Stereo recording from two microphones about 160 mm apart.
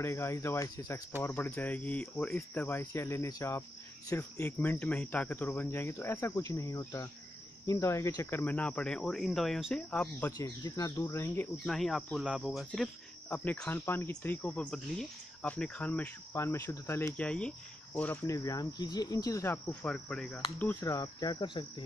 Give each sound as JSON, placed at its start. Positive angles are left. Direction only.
{"t": 0.0, "sound": "speech", "side_deg": 15}
{"t": 10.3, "sound": "speech", "side_deg": 20}
{"t": 11.5, "sound": "speech", "side_deg": 0}
{"t": 20.8, "sound": "speech", "side_deg": 25}